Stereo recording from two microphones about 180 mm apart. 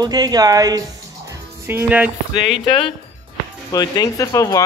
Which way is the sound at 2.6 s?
30° left (ahead or behind).